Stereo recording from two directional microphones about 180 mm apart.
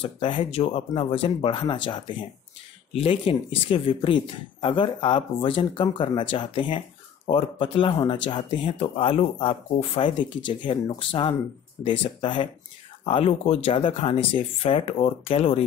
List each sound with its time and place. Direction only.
0.0 s speech: 30° left (ahead or behind)
2.9 s speech: 30° left (ahead or behind)